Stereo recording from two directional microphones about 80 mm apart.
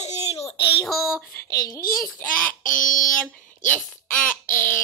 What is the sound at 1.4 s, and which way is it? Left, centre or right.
Speech, left.